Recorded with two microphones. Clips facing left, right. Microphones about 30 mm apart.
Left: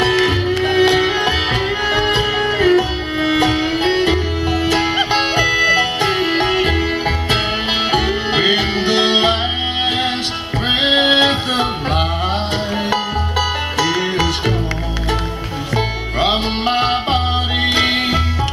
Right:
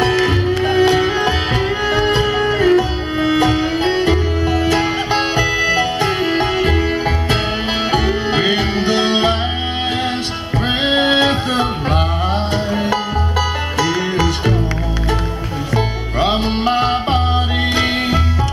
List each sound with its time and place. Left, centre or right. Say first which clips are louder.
0.0 s music: even; centre
10.7 s music: left 2 dB; left
13.4 s music: left 1 dB; centre
15.7 s music: even; left